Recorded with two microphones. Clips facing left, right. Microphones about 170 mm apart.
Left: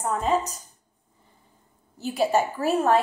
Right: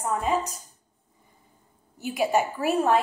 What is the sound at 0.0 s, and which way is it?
Speech, 10° right (ahead or behind).